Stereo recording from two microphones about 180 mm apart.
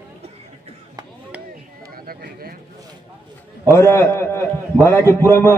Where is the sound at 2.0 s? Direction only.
55° right (ahead or behind).